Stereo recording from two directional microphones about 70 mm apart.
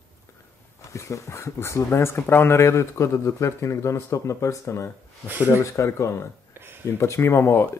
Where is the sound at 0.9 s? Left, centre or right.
Left.